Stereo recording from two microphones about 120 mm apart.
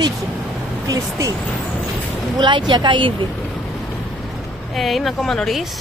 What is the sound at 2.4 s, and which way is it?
Speech, 40° right (ahead or behind).